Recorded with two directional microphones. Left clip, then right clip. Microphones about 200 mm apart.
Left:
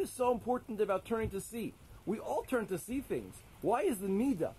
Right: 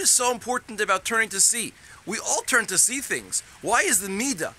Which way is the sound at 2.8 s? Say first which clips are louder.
Right 11 dB; 10° right (ahead or behind).